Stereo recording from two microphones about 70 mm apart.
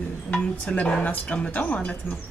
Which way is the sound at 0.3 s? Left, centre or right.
Centre.